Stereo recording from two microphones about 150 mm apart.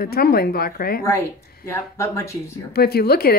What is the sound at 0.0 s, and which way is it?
A woman's voice, 90° left.